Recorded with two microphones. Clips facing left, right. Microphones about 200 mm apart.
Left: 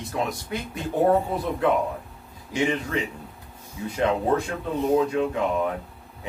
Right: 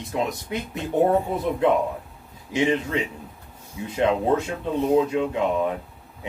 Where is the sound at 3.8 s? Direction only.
20° right (ahead or behind).